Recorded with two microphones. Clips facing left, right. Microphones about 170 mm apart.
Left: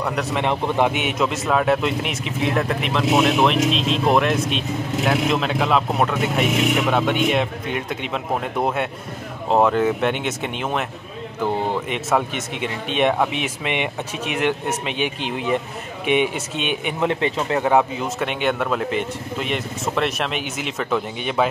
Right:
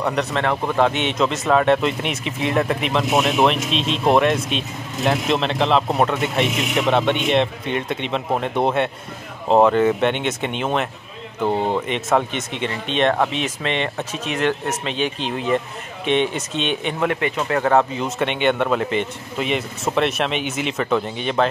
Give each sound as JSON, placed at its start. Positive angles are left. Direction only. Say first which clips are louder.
{"t": 0.0, "sound": "speech", "louder": "right 2 dB", "side_deg": 5}
{"t": 0.4, "sound": "speech", "louder": "even", "side_deg": 15}
{"t": 11.9, "sound": "speech", "louder": "right 2 dB", "side_deg": 5}
{"t": 17.0, "sound": "a man's voice", "louder": "left 1 dB", "side_deg": 25}
{"t": 18.0, "sound": "speech", "louder": "right 2 dB", "side_deg": 0}